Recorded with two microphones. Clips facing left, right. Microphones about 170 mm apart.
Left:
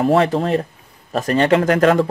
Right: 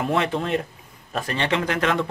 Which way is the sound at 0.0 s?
40° left (ahead or behind).